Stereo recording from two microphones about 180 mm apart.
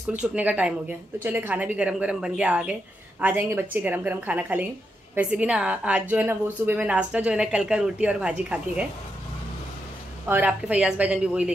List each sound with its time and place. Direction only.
0.1 s speech: 10° right (ahead or behind)
10.2 s speech: 10° right (ahead or behind)